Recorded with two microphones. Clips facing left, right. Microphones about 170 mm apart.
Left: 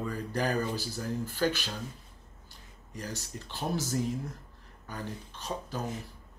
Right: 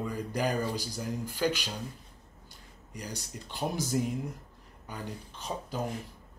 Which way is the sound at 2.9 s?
15° right (ahead or behind).